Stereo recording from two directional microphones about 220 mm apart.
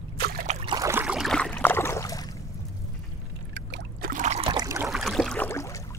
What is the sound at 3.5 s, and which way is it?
Boat, 50° right (ahead or behind).